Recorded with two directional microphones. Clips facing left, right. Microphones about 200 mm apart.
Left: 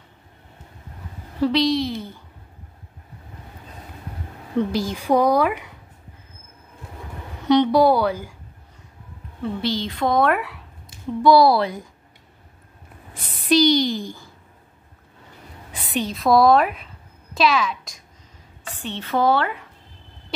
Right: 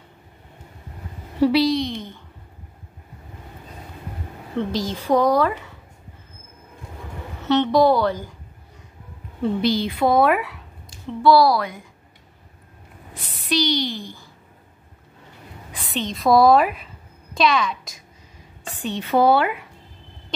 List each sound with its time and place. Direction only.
1.4 s a sound: 5° right (ahead or behind)
4.6 s a woman's voice: 10° left (ahead or behind)
7.4 s a woman's voice: 10° left (ahead or behind)
9.6 s a woman's voice: 10° right (ahead or behind)
11.2 s a woman's voice: 20° left (ahead or behind)
13.1 s a woman's voice: 50° left (ahead or behind)
15.8 s a sound: 15° left (ahead or behind)
16.1 s a child's voice: centre (ahead or behind)
18.8 s a woman's voice: 15° right (ahead or behind)